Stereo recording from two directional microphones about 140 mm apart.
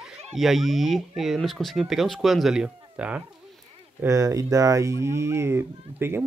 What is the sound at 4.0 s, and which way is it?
Speech, 20° right (ahead or behind).